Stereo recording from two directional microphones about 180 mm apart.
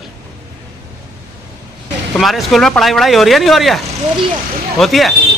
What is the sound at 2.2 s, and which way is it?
Speech, centre (ahead or behind).